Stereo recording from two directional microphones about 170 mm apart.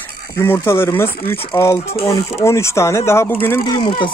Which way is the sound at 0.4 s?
15° left (ahead or behind).